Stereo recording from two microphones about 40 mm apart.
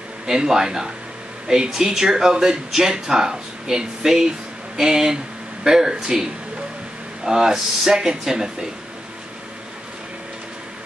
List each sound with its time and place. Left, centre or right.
0.3 s speech: centre
7.2 s speech: centre